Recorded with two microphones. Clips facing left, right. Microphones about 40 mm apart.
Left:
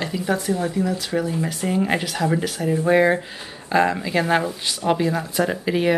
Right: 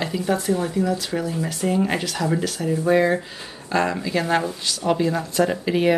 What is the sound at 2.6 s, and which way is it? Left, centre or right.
Speech, left.